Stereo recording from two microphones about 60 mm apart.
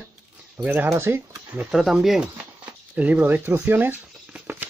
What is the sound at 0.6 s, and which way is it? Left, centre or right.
Speech, right.